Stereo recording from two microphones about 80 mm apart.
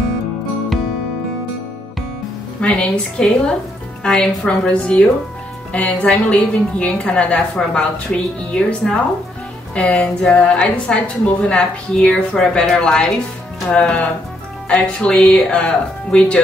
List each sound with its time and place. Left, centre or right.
2.6 s a woman's voice: centre